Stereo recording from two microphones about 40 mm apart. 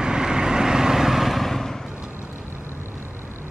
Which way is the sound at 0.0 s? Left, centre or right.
Centre.